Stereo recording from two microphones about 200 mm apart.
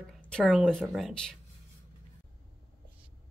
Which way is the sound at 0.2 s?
5° left (ahead or behind).